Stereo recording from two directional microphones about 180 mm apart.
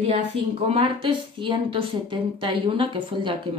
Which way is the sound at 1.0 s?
30° right (ahead or behind).